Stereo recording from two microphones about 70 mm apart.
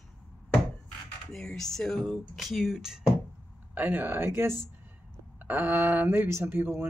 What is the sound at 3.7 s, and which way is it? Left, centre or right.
A man's voice, right.